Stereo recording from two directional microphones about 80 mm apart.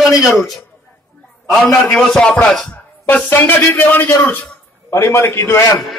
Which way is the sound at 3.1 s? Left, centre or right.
Left.